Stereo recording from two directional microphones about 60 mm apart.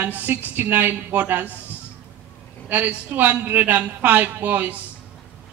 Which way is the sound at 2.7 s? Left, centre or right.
Right.